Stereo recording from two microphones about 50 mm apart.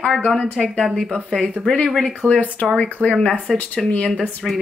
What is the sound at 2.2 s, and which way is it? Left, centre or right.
Speech, left.